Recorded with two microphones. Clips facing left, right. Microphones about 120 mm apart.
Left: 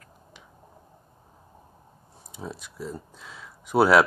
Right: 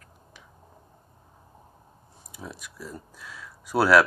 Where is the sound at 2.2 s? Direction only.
25° left (ahead or behind).